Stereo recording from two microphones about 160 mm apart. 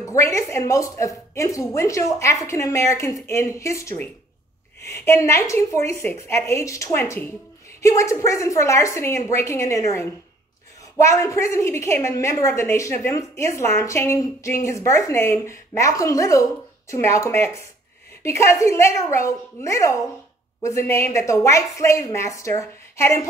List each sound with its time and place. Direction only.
0.0 s a woman's voice: 20° left (ahead or behind)